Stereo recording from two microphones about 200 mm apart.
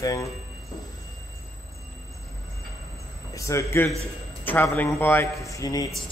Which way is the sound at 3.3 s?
15° left (ahead or behind).